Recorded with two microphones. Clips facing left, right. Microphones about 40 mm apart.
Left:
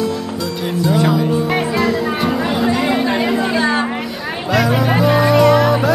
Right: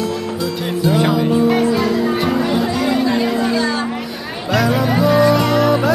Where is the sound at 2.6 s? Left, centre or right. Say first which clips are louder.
Left 1 dB; left.